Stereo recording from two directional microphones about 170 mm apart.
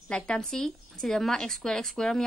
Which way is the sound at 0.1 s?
5° left (ahead or behind).